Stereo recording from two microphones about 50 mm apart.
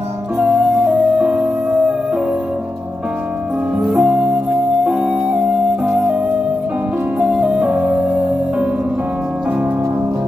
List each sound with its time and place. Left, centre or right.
1.1 s music: centre
3.8 s music: centre
4.9 s music: right
7.4 s music: centre
7.7 s music: right